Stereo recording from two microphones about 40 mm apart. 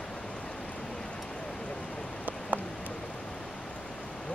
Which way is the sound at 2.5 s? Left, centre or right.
Right.